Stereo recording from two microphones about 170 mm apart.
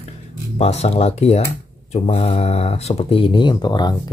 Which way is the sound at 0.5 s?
40° left (ahead or behind).